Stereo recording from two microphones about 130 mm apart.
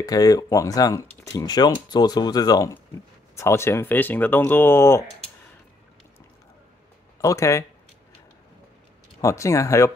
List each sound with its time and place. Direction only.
0.0 s speech: 30° left (ahead or behind)
7.2 s speech: 25° left (ahead or behind)
9.2 s speech: 25° left (ahead or behind)